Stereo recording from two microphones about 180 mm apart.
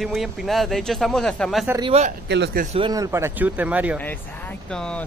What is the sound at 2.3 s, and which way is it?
Speech, 70° right (ahead or behind).